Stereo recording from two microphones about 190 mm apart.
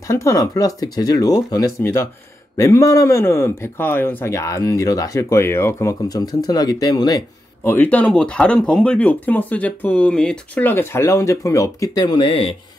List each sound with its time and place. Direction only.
0.1 s speech: 15° left (ahead or behind)